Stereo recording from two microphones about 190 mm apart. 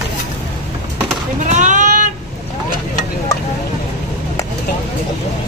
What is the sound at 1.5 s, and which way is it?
Speech, 40° right (ahead or behind).